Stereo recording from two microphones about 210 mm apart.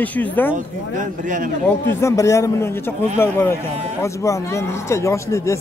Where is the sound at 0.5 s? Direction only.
40° right (ahead or behind).